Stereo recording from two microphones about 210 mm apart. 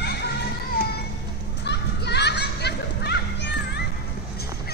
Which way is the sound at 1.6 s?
55° left (ahead or behind).